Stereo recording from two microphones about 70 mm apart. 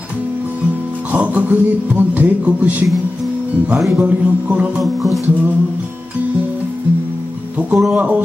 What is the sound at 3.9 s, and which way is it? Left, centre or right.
Music, right.